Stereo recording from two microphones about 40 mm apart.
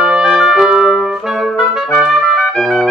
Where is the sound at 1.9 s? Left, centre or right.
Centre.